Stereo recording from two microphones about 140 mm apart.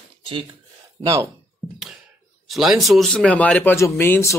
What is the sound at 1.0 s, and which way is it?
Speech, 20° right (ahead or behind).